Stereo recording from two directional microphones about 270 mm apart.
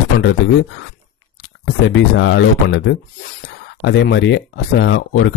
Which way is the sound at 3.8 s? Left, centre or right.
Left.